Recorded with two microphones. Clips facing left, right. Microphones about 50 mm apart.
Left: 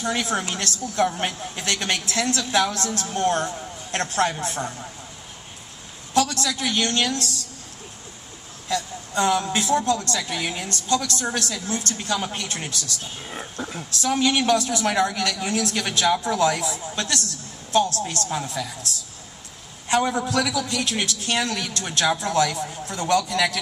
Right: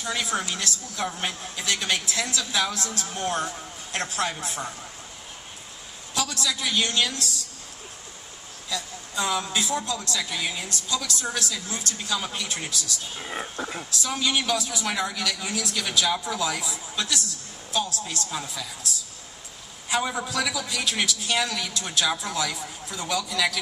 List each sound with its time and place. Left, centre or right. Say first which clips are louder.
0.5 s a woman's voice: left 3 dB; left
1.1 s speech: left 4 dB; left
1.6 s a woman's voice: left 1 dB; left
6.1 s a woman's voice: left 6 dB; left
8.6 s a sound: left 7 dB; left
9.5 s a woman's voice: left 6 dB; left
13.2 s speech: right 3 dB; centre
13.9 s a woman's voice: left 5 dB; left
20.5 s a woman's voice: left 3 dB; left